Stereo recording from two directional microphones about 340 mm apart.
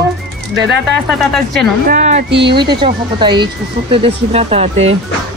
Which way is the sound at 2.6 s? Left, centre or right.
Centre.